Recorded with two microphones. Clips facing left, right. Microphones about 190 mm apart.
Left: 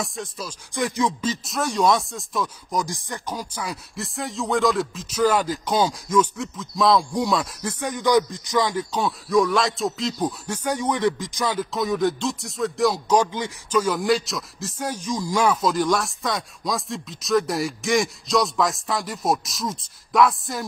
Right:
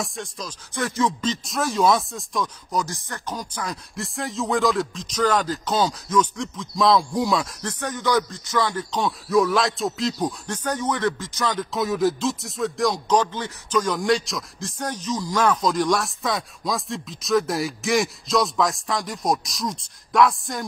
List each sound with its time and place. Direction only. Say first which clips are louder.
0.0 s speech: left 1 dB; centre (ahead or behind)
2.7 s speech: left 1 dB; 15° left (ahead or behind)
7.8 s speech: left 3 dB; 15° left (ahead or behind)
9.0 s speech: even; centre (ahead or behind)
11.7 s speech: right 2 dB; centre (ahead or behind)